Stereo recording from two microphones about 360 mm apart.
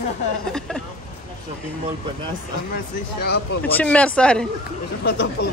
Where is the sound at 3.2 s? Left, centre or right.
Left.